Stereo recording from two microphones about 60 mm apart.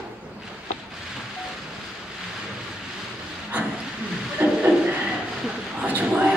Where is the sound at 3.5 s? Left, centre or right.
Right.